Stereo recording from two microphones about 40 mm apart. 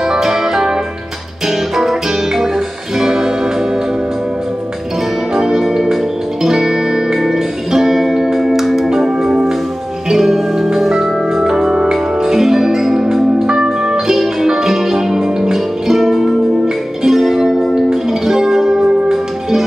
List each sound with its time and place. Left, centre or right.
0.1 s music: centre
1.8 s music: centre
5.3 s music: centre